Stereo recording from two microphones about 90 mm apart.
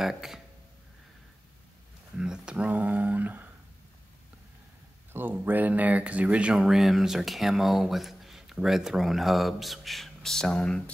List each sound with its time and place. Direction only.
0.0 s speech: 5° right (ahead or behind)
2.1 s speech: 10° right (ahead or behind)
5.1 s speech: 25° right (ahead or behind); by 10.8 s 10° left (ahead or behind)